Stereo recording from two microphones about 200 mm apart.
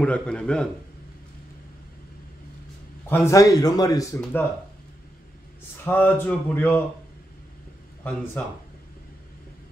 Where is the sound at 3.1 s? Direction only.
15° left (ahead or behind).